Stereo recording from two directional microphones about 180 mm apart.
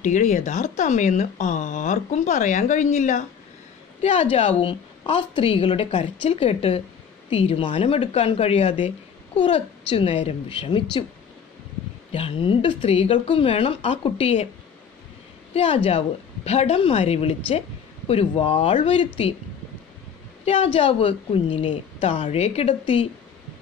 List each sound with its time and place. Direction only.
0.0 s a woman's voice: 40° left (ahead or behind)
12.1 s a woman's voice: 30° left (ahead or behind)
15.5 s a woman's voice: 35° left (ahead or behind)
20.4 s a woman's voice: 30° left (ahead or behind)